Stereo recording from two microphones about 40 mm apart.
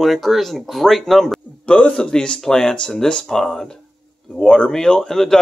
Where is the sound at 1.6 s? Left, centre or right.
Left.